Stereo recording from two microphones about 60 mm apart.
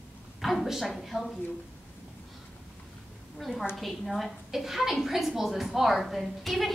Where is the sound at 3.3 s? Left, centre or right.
Centre.